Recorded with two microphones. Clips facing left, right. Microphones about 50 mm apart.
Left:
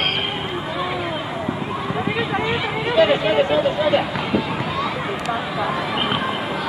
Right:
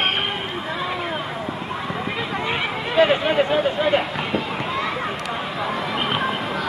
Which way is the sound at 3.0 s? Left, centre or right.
Centre.